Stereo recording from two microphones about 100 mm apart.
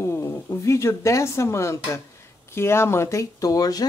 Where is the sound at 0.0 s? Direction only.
30° left (ahead or behind).